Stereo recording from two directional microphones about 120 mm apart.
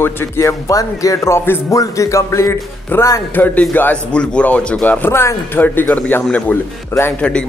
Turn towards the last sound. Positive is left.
turn(degrees=10)  # may be behind; listen again after turning